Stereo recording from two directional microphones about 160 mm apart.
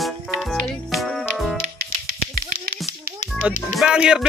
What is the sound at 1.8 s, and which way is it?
Music, 85° right.